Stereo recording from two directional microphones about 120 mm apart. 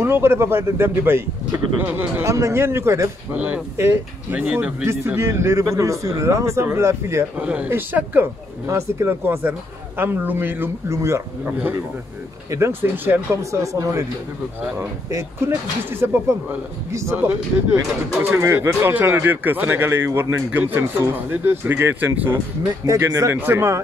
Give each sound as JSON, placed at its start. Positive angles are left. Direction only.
{"t": 0.0, "sound": "a man's voice", "side_deg": -20}
{"t": 3.3, "sound": "speech", "side_deg": -10}
{"t": 4.8, "sound": "a man's voice", "side_deg": -20}
{"t": 7.3, "sound": "a man's voice", "side_deg": -10}
{"t": 15.0, "sound": "a man's voice", "side_deg": -20}